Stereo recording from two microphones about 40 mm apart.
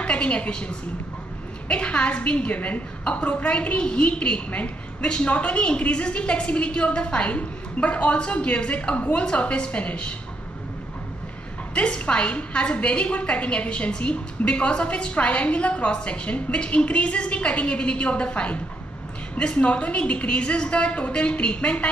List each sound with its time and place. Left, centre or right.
0.0 s a woman's voice: left
11.9 s a woman's voice: left